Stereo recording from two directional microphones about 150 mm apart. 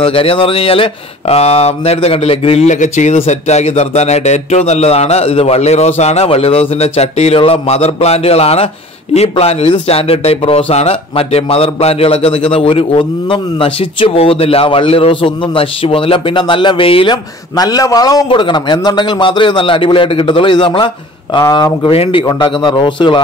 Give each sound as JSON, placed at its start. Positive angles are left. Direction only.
{"t": 0.0, "sound": "a man's voice", "side_deg": 40}
{"t": 21.9, "sound": "a man's voice", "side_deg": 40}
{"t": 22.2, "sound": "a man's voice", "side_deg": 30}